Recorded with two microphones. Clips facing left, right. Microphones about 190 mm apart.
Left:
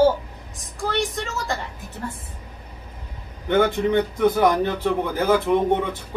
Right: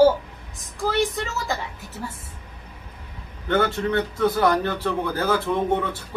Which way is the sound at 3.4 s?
15° left (ahead or behind).